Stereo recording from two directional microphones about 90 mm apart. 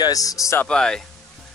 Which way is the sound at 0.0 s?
40° left (ahead or behind).